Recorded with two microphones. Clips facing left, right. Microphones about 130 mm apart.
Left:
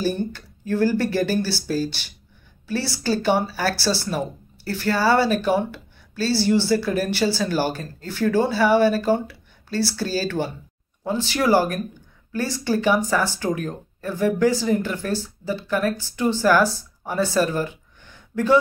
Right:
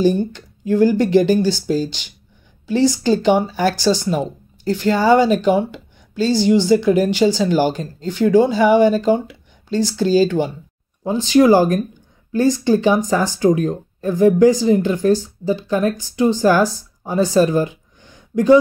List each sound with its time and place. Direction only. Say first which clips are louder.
0.0 s speech: right 8 dB; 15° right (ahead or behind)